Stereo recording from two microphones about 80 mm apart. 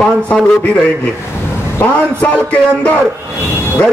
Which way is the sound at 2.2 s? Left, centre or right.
Centre.